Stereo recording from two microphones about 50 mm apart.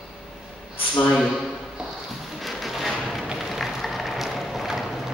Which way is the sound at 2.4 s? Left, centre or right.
Centre.